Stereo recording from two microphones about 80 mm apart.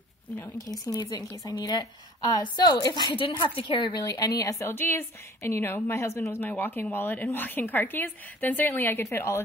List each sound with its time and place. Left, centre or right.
0.7 s a woman's voice: left
4.0 s a woman's voice: left
4.7 s a woman's voice: left